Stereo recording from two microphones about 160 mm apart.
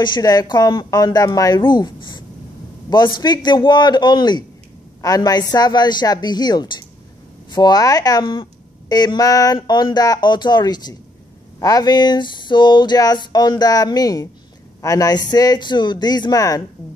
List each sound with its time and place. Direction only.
0.0 s speech: 25° left (ahead or behind)